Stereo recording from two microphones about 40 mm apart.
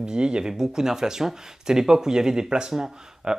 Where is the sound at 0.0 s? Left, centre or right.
Right.